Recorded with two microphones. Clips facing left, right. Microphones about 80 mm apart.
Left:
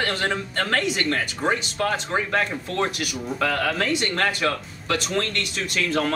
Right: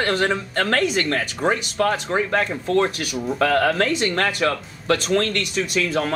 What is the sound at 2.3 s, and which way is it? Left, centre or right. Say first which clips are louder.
Speech: right 5 dB; right.